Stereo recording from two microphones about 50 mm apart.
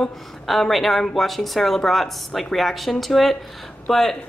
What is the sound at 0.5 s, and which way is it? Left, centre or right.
A woman's voice, centre.